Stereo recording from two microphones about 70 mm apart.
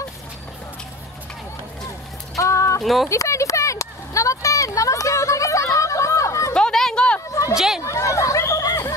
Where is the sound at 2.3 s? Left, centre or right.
Left.